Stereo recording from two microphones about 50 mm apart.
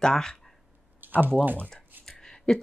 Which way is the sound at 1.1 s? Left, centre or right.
Right.